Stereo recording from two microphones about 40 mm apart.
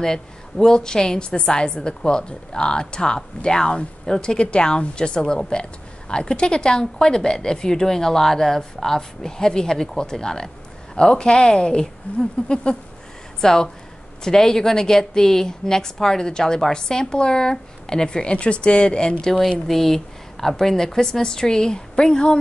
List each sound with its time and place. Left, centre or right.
0.0 s a woman's voice: centre
19.2 s a woman's voice: centre